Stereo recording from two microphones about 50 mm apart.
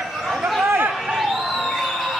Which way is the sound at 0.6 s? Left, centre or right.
Right.